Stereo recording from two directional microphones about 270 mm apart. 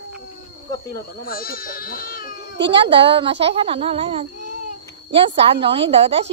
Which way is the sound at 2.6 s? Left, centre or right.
Centre.